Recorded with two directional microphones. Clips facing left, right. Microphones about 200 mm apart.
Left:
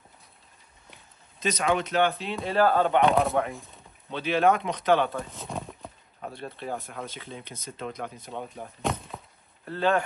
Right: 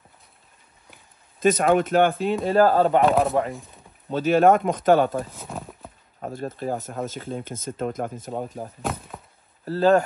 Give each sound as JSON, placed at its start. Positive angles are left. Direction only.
{"t": 1.4, "sound": "speech", "side_deg": -50}
{"t": 3.0, "sound": "chopping", "side_deg": 0}
{"t": 3.5, "sound": "a sound", "side_deg": 0}
{"t": 4.1, "sound": "speech", "side_deg": -45}
{"t": 5.3, "sound": "roaring cats", "side_deg": 0}
{"t": 6.2, "sound": "speech", "side_deg": -45}
{"t": 8.8, "sound": "a sound", "side_deg": 0}
{"t": 9.7, "sound": "speech", "side_deg": -40}